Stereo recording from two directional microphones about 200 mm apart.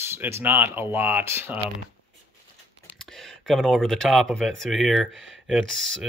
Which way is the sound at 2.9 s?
Centre (ahead or behind).